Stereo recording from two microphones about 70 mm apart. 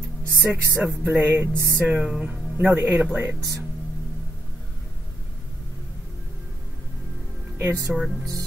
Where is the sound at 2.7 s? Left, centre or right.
Right.